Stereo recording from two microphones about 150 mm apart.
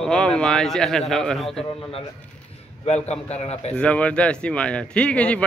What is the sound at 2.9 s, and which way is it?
Speech, 45° left (ahead or behind).